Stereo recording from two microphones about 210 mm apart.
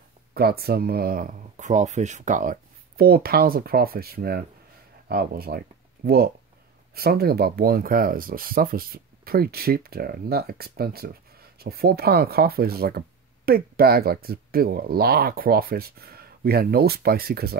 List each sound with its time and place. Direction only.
0.3 s speech: 50° right (ahead or behind)